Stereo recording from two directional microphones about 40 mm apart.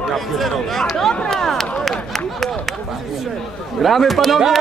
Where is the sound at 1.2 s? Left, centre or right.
Centre.